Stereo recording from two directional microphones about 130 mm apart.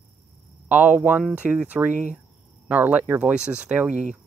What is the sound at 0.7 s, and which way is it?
Speech, 10° right (ahead or behind).